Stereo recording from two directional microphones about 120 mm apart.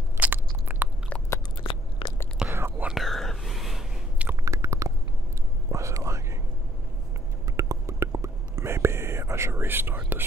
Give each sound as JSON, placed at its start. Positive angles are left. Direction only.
{"t": 0.2, "sound": "biting", "side_deg": -15}
{"t": 1.6, "sound": "crunch", "side_deg": 45}
{"t": 2.4, "sound": "whispering", "side_deg": -20}
{"t": 2.9, "sound": "whispering", "side_deg": 0}
{"t": 4.3, "sound": "chewing", "side_deg": -25}
{"t": 5.7, "sound": "whispering", "side_deg": -25}
{"t": 7.5, "sound": "whispering", "side_deg": -25}